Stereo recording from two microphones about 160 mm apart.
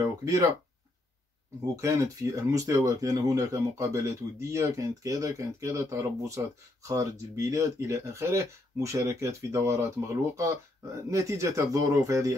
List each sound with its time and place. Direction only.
0.2 s speech: 20° right (ahead or behind)
1.8 s speech: 20° right (ahead or behind)